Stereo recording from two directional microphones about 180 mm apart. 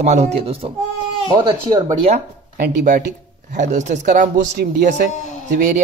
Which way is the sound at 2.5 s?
50° right (ahead or behind).